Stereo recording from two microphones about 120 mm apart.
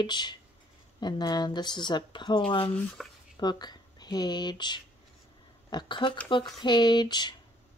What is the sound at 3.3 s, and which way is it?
Speech, 35° left (ahead or behind).